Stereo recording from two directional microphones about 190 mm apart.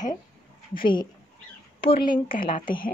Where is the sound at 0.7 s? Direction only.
25° left (ahead or behind).